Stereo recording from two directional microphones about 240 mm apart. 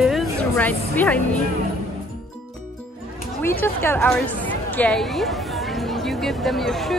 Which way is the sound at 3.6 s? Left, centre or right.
Centre.